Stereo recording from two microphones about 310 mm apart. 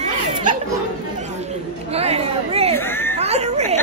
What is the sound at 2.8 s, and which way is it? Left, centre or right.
Speech, centre.